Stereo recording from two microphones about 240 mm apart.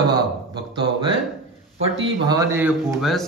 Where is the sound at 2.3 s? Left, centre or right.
Centre.